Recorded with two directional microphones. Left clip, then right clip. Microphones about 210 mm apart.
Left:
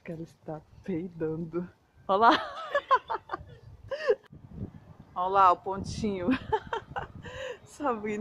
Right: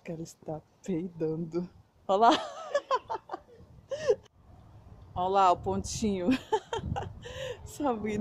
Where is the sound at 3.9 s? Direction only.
5° right (ahead or behind).